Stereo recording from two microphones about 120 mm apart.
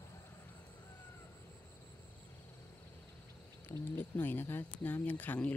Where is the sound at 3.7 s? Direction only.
15° left (ahead or behind).